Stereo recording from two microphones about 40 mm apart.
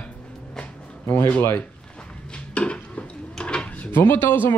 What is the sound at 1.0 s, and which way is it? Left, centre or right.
Speech, left.